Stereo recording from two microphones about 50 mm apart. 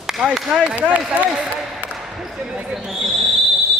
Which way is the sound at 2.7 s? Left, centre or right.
Centre.